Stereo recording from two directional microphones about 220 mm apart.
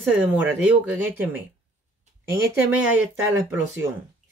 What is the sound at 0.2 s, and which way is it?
Speech, 10° right (ahead or behind).